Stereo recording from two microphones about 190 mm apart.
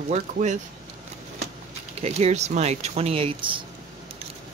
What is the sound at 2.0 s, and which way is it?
Speech, 35° right (ahead or behind).